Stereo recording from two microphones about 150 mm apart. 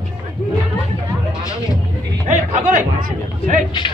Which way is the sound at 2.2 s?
60° right (ahead or behind).